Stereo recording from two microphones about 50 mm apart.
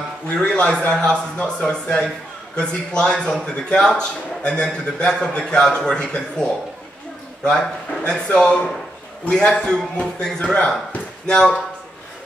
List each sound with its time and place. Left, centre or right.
0.3 s a man's voice: centre
7.4 s a man's voice: centre